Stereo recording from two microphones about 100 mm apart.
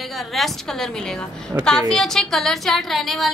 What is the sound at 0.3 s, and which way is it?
Speech, centre (ahead or behind).